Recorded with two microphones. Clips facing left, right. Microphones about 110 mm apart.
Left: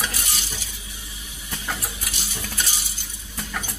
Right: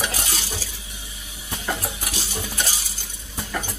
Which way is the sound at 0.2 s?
90° right.